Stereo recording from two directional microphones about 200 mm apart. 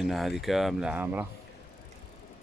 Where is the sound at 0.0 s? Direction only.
Centre (ahead or behind).